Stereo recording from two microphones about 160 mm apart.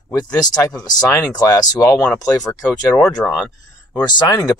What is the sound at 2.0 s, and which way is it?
Speech, 5° left (ahead or behind).